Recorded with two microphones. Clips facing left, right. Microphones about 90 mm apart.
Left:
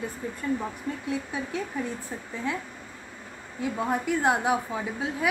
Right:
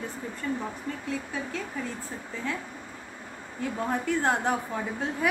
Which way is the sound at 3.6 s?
10° left (ahead or behind).